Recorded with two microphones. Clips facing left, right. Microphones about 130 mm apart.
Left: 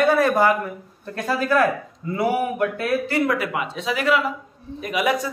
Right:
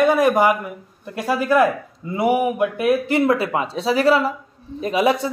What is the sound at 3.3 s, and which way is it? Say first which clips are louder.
A man's voice: right 4 dB; 30° right (ahead or behind).